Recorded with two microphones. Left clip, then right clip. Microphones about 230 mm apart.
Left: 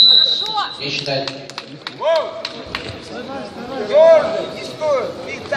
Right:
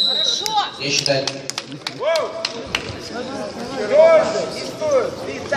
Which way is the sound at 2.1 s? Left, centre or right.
Right.